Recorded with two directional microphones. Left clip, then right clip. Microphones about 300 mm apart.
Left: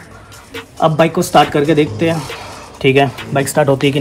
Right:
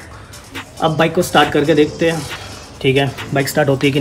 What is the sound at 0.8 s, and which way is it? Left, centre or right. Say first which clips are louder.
Speech: left 2 dB; centre.